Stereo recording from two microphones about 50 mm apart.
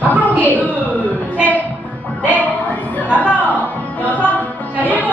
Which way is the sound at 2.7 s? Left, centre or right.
Left.